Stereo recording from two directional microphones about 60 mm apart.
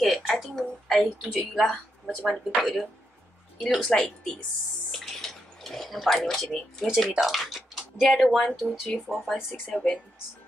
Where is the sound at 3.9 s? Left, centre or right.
Centre.